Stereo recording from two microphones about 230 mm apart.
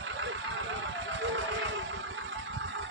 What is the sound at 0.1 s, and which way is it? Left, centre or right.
Vehicle, right.